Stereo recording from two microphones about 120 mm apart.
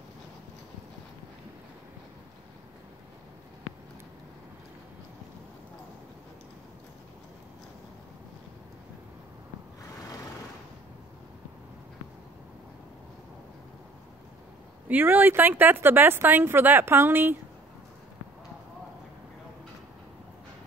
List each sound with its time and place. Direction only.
14.9 s speech: 15° right (ahead or behind)